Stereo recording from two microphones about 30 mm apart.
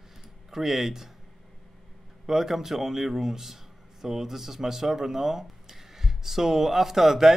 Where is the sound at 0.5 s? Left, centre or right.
Centre.